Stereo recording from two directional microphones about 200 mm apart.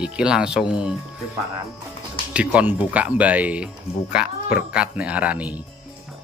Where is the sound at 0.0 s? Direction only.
5° right (ahead or behind).